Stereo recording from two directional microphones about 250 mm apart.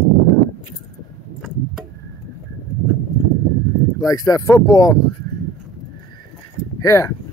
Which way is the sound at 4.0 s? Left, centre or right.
Centre.